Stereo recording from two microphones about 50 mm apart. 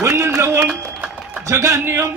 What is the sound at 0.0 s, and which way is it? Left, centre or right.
Speech, right.